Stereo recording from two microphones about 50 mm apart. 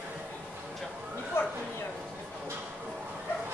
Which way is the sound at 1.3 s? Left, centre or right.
Left.